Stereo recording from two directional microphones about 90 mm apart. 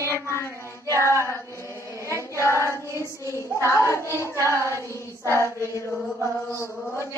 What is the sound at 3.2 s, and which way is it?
Hands, 35° left (ahead or behind).